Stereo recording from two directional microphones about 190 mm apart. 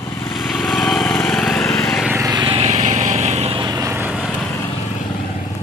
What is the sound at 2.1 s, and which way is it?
Vehicle, 20° right (ahead or behind).